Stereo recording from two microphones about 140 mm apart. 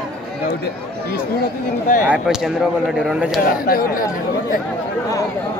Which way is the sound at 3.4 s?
90° left.